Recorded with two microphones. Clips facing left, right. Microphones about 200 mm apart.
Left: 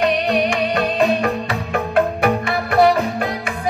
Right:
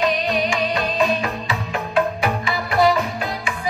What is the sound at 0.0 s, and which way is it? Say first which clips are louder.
Music: left 3 dB; 60° left (ahead or behind).